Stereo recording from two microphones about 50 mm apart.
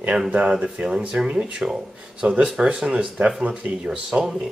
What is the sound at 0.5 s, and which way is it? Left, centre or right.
Speech, centre.